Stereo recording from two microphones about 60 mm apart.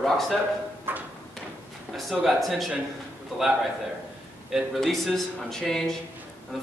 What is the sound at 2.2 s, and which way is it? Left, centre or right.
Speech, centre.